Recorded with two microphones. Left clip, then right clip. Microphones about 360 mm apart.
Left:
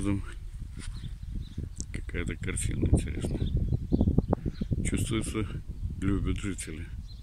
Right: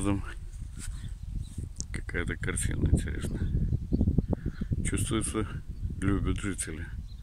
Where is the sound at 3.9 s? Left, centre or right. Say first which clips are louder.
Left 4 dB; left.